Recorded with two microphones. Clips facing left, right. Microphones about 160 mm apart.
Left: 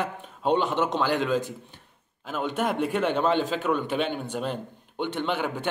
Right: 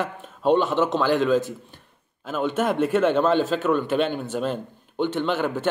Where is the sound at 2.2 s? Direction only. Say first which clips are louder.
Right 4 dB; 10° left (ahead or behind).